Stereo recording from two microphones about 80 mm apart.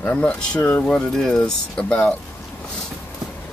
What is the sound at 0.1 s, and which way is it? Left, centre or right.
Speech, centre.